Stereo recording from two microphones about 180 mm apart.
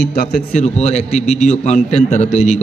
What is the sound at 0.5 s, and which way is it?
A man's voice, 40° left (ahead or behind).